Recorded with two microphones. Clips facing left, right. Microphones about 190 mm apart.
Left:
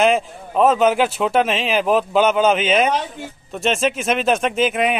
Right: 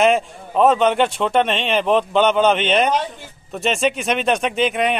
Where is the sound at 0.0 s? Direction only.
Centre (ahead or behind).